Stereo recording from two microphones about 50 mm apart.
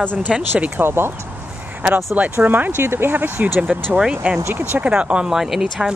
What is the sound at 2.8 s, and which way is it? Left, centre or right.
Speech, right.